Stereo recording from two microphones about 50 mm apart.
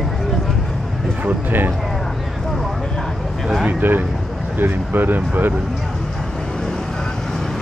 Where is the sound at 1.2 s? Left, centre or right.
Right.